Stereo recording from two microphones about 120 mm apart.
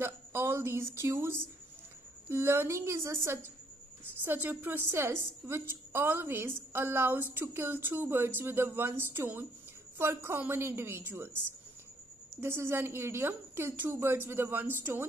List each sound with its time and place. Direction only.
0.0 s a woman's voice: 20° right (ahead or behind)
12.4 s a woman's voice: 20° right (ahead or behind)